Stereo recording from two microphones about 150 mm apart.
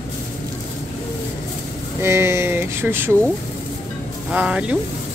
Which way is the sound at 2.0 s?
15° right (ahead or behind).